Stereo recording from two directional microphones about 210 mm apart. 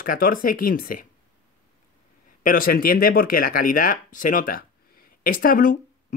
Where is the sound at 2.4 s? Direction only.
40° left (ahead or behind).